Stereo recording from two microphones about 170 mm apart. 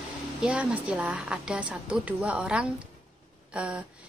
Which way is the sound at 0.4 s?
5° right (ahead or behind).